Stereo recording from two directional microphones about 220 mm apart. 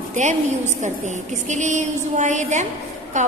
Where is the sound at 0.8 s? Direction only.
35° right (ahead or behind).